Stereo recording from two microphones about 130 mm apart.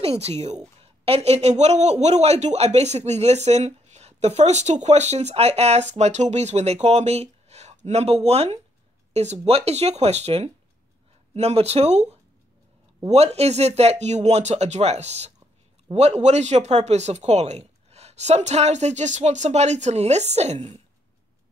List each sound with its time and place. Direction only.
0.0 s a woman's voice: 50° right (ahead or behind)
20.5 s a woman's voice: 50° right (ahead or behind)